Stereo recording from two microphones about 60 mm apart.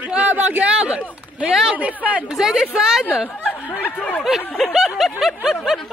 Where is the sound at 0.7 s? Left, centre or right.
Centre.